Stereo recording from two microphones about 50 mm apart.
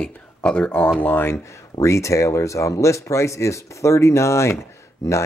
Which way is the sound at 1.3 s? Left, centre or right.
Left.